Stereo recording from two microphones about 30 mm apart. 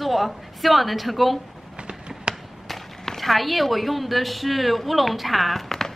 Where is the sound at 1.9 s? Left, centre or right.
Right.